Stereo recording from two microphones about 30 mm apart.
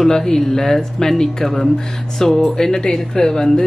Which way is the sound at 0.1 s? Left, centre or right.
Centre.